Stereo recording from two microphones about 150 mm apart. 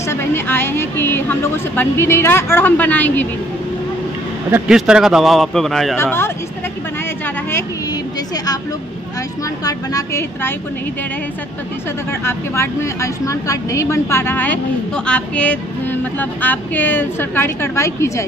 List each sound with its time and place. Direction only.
0.1 s speech: 15° left (ahead or behind)
4.6 s a man's voice: 5° right (ahead or behind)
5.9 s speech: 15° left (ahead or behind)
9.7 s speech: 20° left (ahead or behind)
12.3 s speech: 20° left (ahead or behind)